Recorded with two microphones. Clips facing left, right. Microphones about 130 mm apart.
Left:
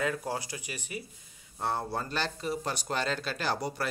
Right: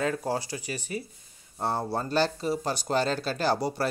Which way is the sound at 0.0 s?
30° right (ahead or behind).